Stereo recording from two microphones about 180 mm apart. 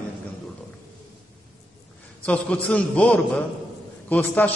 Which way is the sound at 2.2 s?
5° left (ahead or behind).